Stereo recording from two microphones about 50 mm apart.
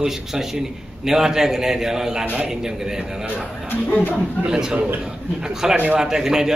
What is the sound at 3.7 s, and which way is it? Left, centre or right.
Speech, left.